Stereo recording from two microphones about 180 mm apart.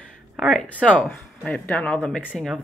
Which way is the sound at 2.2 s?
5° right (ahead or behind).